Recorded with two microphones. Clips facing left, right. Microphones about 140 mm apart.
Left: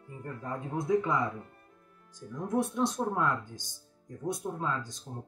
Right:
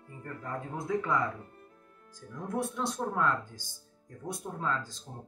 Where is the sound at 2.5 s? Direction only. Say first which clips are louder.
Left 4 dB; 20° left (ahead or behind).